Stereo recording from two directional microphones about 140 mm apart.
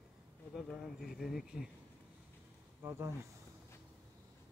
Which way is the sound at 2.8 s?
20° right (ahead or behind).